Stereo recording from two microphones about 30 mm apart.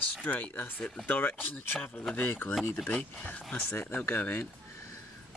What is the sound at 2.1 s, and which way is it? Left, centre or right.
Speech, left.